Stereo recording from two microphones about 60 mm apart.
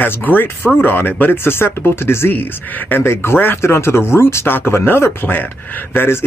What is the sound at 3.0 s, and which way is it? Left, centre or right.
Speech, left.